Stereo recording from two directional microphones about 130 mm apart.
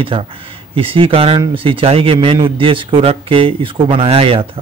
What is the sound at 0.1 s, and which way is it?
Speech, 45° right (ahead or behind).